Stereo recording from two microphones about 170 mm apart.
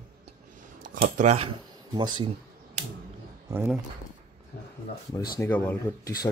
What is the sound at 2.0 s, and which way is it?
Speech, 25° right (ahead or behind).